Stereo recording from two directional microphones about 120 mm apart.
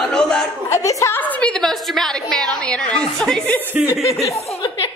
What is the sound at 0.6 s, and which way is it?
Speech, 25° left (ahead or behind).